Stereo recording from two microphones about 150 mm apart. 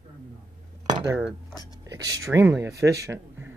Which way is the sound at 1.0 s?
10° right (ahead or behind).